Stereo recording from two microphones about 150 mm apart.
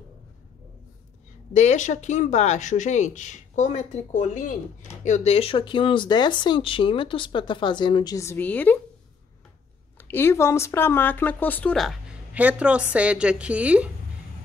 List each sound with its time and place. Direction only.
1.5 s speech: 50° left (ahead or behind); by 8.7 s 10° left (ahead or behind)
10.0 s a woman's voice: 15° left (ahead or behind); by 13.8 s 10° right (ahead or behind)